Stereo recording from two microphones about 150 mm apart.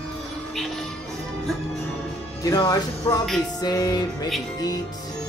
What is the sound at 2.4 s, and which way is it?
Speech, 25° left (ahead or behind).